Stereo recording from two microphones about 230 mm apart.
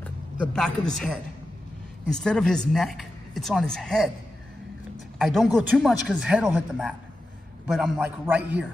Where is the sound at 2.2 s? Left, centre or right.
Centre.